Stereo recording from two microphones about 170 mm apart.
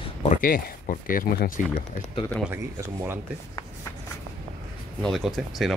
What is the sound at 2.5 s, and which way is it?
Speech, 15° right (ahead or behind).